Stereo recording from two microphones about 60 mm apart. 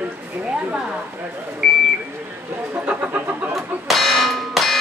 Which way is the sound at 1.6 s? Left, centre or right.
Centre.